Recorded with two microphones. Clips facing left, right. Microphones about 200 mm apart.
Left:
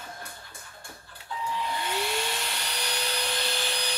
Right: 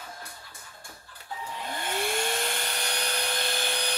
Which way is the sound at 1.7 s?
50° right (ahead or behind).